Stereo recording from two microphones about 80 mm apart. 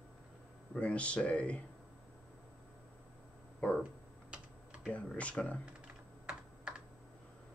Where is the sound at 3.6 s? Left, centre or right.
Centre.